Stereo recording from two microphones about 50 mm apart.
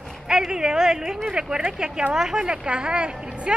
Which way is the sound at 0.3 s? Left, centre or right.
Centre.